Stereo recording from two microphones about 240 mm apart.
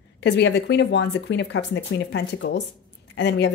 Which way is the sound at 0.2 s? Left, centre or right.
Left.